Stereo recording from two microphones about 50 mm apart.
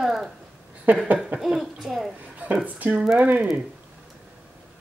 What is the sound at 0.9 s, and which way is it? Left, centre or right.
Speech, right.